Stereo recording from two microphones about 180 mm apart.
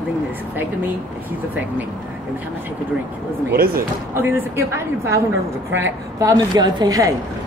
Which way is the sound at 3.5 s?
55° right (ahead or behind).